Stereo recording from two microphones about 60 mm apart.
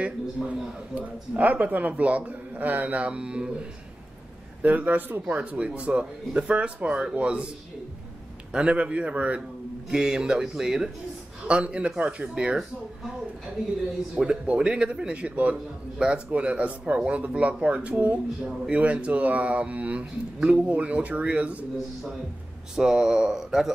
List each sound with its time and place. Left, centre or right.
0.0 s speech: right
4.6 s a man's voice: right
8.5 s speech: centre
9.8 s a man's voice: centre
14.1 s speech: centre
22.8 s a man's voice: centre